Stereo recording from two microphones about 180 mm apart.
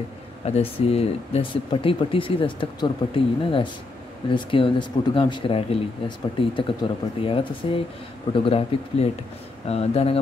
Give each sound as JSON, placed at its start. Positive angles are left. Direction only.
{"t": 0.5, "sound": "speech", "side_deg": 35}